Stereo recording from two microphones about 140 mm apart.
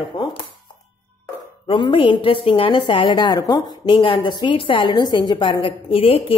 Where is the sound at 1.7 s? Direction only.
35° left (ahead or behind).